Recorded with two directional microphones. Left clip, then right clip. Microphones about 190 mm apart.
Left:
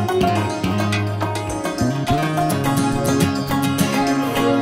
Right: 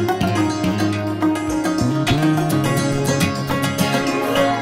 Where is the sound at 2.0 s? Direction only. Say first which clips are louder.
Left 1 dB; centre (ahead or behind).